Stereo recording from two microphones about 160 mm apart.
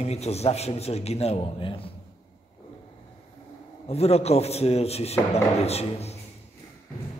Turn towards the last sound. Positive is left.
turn(degrees=40)  # may be behind; listen again after turning